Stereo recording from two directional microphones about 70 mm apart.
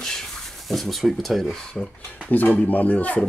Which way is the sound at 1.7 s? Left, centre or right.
Centre.